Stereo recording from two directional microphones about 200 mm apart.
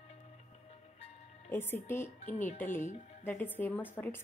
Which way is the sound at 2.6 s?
10° left (ahead or behind).